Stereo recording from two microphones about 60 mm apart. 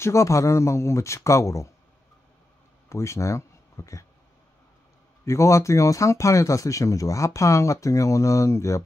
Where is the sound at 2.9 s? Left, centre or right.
Left.